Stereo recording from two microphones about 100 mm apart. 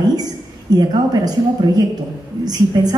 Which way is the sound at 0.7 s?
40° right (ahead or behind).